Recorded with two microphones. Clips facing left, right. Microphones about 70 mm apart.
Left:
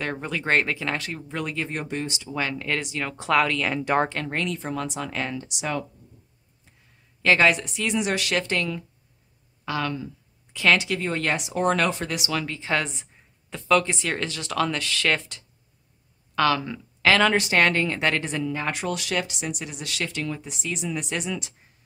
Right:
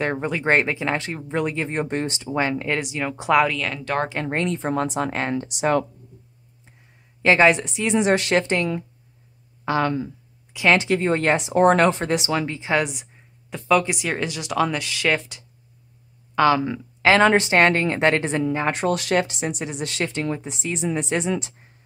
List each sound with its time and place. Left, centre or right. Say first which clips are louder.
0.0 s speech: right 5 dB; right
1.9 s speech: right 5 dB; right; by 3.6 s centre
3.6 s speech: left 2 dB; centre
4.1 s speech: right 4 dB; right
7.2 s speech: right 3 dB; right
10.5 s speech: right 3 dB; centre
10.8 s speech: right 6 dB; right